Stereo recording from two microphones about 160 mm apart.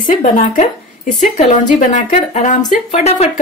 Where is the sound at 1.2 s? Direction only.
50° left (ahead or behind).